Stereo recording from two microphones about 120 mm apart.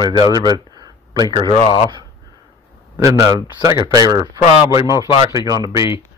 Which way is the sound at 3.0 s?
25° right (ahead or behind).